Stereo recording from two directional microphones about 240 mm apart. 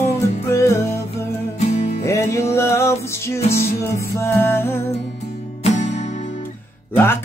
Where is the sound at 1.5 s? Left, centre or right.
Left.